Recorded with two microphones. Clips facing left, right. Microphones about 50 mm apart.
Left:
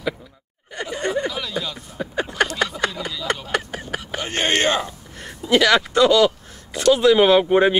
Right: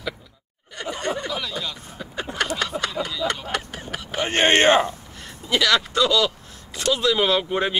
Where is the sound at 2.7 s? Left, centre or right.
Right.